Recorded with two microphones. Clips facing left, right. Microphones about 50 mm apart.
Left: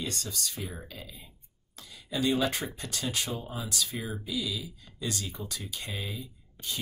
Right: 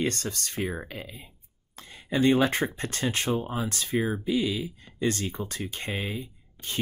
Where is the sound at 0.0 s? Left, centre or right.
Right.